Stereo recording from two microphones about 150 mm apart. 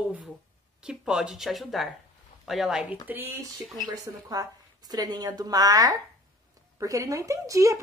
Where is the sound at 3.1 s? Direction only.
15° right (ahead or behind).